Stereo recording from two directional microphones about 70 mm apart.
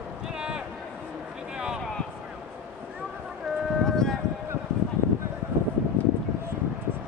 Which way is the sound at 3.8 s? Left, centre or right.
Centre.